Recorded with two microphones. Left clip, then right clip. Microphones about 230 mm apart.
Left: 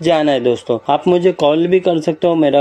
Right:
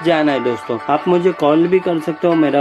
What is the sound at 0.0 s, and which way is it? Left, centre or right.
Speech, centre.